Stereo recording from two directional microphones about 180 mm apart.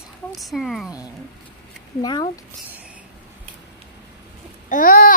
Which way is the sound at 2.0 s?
25° left (ahead or behind).